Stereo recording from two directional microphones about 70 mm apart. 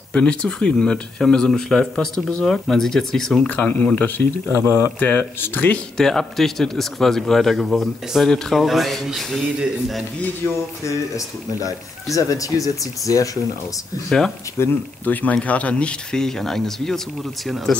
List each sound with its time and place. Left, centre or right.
0.1 s speech: centre
3.4 s speech: left
4.5 s speech: left
5.0 s speech: left
5.9 s speech: centre
10.9 s speech: left
15.0 s speech: left; by 17.0 s centre